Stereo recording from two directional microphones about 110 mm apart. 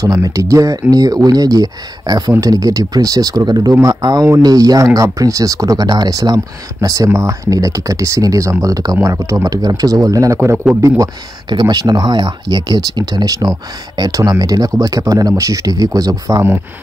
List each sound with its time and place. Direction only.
0.0 s speech: 30° right (ahead or behind)
11.4 s speech: 40° right (ahead or behind)